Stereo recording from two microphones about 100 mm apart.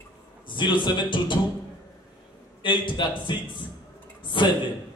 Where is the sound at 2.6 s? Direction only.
55° left (ahead or behind).